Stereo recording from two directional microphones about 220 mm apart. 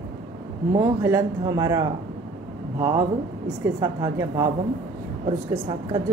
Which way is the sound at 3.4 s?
15° right (ahead or behind).